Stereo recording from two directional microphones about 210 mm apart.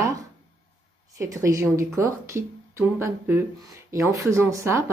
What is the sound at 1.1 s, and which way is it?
Speech, 15° right (ahead or behind).